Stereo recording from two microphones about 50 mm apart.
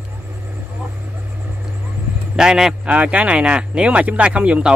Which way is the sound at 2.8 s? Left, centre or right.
Right.